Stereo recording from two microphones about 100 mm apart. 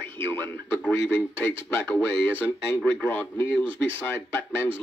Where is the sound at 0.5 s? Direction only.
20° left (ahead or behind).